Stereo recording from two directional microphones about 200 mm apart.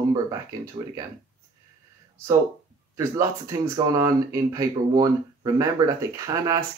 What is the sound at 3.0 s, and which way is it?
Speech, 15° right (ahead or behind).